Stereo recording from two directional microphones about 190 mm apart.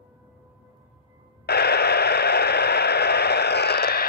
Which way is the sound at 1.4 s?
60° left (ahead or behind).